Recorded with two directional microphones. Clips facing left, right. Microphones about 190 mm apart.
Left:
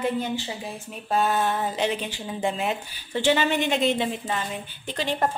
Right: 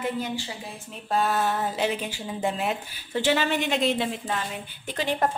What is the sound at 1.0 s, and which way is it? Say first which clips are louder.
Speech: left 1 dB; centre (ahead or behind).